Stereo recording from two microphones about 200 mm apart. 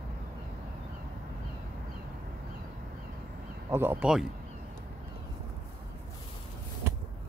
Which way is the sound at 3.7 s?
10° right (ahead or behind).